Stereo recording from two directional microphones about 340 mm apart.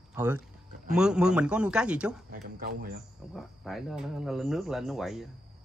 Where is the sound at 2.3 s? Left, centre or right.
Right.